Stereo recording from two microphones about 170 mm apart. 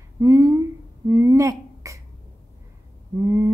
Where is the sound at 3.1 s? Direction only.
15° right (ahead or behind).